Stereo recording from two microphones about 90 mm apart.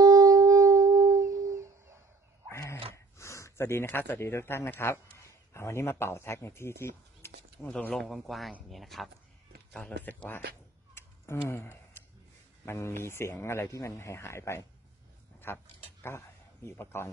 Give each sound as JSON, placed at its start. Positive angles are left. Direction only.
{"t": 0.0, "sound": "music", "side_deg": -45}
{"t": 2.5, "sound": "dog", "side_deg": 30}
{"t": 3.2, "sound": "speech", "side_deg": 35}
{"t": 7.9, "sound": "speech", "side_deg": 0}
{"t": 9.7, "sound": "a sound", "side_deg": 10}
{"t": 10.0, "sound": "speech", "side_deg": 20}
{"t": 11.0, "sound": "tick-tock", "side_deg": 30}
{"t": 12.6, "sound": "speech", "side_deg": 30}